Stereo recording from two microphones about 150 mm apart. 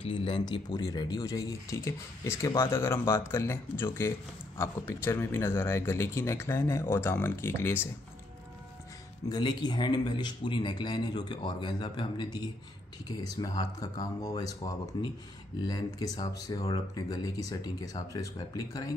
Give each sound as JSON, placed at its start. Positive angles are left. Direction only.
{"t": 0.0, "sound": "speech", "side_deg": 35}
{"t": 9.3, "sound": "speech", "side_deg": 30}